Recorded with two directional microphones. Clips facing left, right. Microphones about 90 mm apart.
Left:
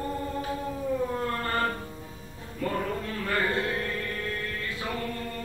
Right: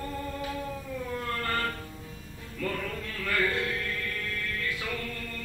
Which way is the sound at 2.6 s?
30° left (ahead or behind).